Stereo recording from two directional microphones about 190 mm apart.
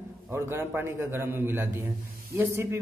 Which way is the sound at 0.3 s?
15° right (ahead or behind).